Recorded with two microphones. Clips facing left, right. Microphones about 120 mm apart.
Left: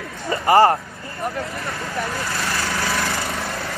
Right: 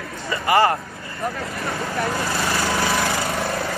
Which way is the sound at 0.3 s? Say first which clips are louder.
Left 3 dB; 35° left (ahead or behind).